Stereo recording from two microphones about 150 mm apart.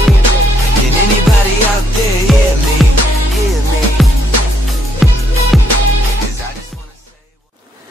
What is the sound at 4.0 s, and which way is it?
Music, centre (ahead or behind).